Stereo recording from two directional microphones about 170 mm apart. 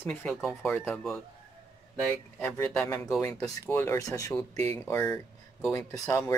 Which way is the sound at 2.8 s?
15° left (ahead or behind).